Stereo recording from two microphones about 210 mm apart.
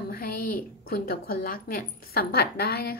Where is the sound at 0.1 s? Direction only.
45° left (ahead or behind).